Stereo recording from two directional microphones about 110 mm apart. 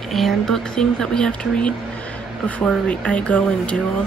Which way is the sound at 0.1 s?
5° left (ahead or behind).